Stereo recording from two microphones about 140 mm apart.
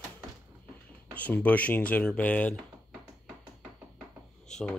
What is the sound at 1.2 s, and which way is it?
Speech, 10° left (ahead or behind).